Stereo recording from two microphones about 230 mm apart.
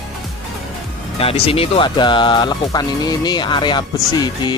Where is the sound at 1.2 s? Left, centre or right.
Left.